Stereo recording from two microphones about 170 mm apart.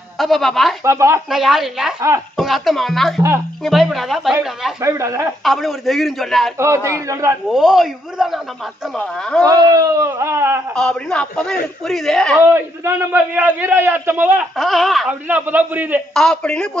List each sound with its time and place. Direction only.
0.2 s speech: centre (ahead or behind)
0.8 s a man's voice: 15° right (ahead or behind)
1.3 s speech: centre (ahead or behind)
2.0 s a man's voice: 15° right (ahead or behind)
2.3 s speech: centre (ahead or behind)
4.7 s a man's voice: 15° right (ahead or behind)
5.4 s speech: centre (ahead or behind)
6.6 s a man's voice: 15° right (ahead or behind)
7.4 s speech: centre (ahead or behind)
9.4 s speech: 20° right (ahead or behind)
10.7 s speech: 5° left (ahead or behind)
12.4 s a man's voice: 15° right (ahead or behind)
16.1 s speech: 5° left (ahead or behind)